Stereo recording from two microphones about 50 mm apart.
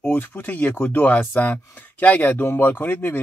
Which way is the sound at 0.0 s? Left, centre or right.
Left.